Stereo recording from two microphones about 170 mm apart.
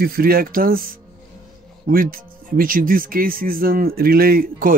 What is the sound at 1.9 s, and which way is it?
Speech, 55° right (ahead or behind).